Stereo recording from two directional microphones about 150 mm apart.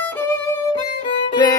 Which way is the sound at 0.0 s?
15° left (ahead or behind).